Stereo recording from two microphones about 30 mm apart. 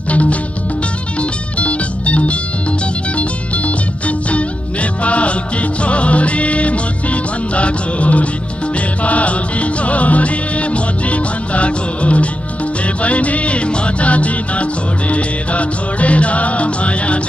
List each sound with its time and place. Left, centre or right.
0.1 s music: left
1.6 s music: left
5.0 s music: left